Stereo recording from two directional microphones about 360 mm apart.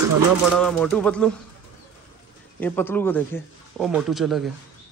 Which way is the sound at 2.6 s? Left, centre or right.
Centre.